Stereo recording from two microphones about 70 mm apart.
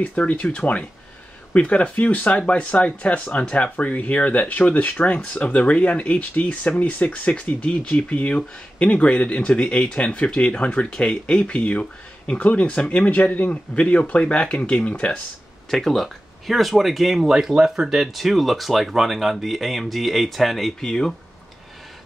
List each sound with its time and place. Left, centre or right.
0.0 s speech: centre
15.7 s speech: centre